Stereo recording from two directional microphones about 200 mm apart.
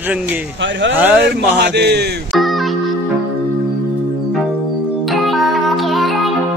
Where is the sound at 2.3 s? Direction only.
Centre (ahead or behind).